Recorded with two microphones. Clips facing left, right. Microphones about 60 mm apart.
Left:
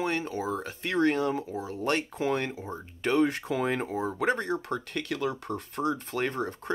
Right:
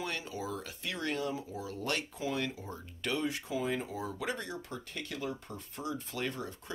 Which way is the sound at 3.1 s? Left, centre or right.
Left.